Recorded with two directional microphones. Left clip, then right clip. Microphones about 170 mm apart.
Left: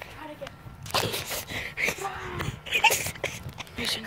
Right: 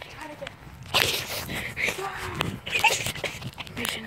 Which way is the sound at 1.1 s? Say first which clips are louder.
Right 2 dB; 35° left (ahead or behind).